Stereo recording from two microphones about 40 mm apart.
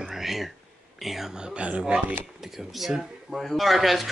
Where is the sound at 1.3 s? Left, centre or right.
Right.